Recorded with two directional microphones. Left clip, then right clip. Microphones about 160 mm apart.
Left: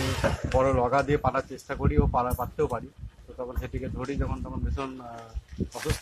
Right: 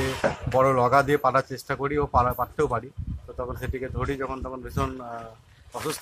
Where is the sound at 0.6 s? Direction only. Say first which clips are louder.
Right 4 dB; 15° right (ahead or behind).